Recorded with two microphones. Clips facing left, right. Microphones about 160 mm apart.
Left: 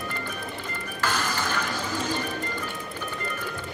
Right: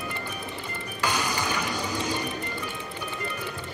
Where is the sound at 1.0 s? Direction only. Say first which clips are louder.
Even; 10° right (ahead or behind).